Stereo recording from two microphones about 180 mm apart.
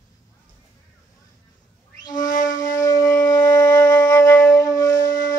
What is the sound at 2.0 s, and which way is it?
Wind instrument, 20° left (ahead or behind).